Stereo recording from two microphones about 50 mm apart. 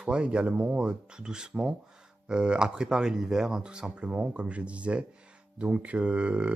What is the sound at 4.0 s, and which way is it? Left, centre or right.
Speech, right.